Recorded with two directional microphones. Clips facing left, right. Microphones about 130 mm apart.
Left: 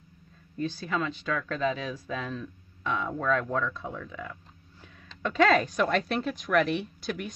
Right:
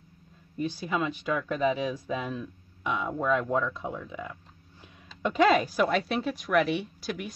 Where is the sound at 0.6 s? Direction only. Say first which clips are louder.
Right 1 dB; 15° right (ahead or behind).